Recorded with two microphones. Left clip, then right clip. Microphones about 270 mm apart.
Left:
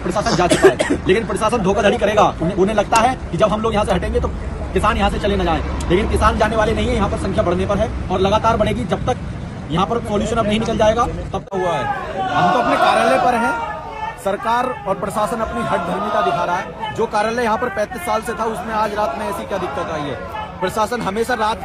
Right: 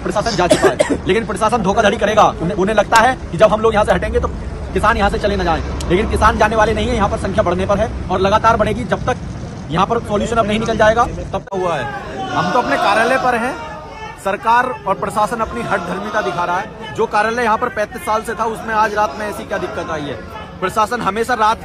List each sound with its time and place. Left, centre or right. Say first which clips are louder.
0.1 s a man's voice: right 1 dB; centre
0.5 s speech: even; right
1.0 s a man's voice: right 1 dB; centre
12.8 s a man's voice: left 1 dB; centre